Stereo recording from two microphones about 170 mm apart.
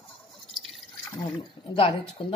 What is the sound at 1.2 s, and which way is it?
Speech, 30° left (ahead or behind).